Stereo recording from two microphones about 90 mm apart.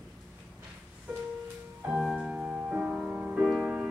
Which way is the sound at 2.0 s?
10° right (ahead or behind).